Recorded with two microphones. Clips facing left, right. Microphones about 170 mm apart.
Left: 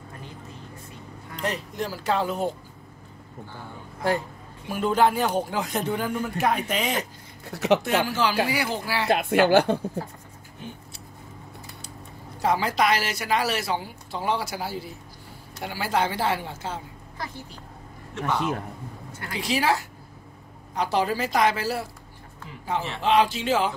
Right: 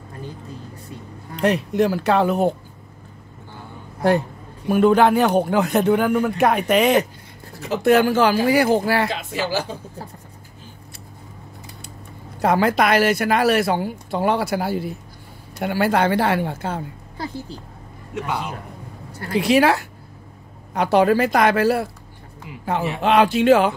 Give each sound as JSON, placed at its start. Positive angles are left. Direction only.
{"t": 1.3, "sound": "speech", "side_deg": -65}
{"t": 4.6, "sound": "speech", "side_deg": -60}
{"t": 7.5, "sound": "speech", "side_deg": 75}
{"t": 7.8, "sound": "speech", "side_deg": -55}
{"t": 9.1, "sound": "speech", "side_deg": 55}
{"t": 12.4, "sound": "speech", "side_deg": -60}
{"t": 18.1, "sound": "a man's voice", "side_deg": -15}
{"t": 19.3, "sound": "speech", "side_deg": -60}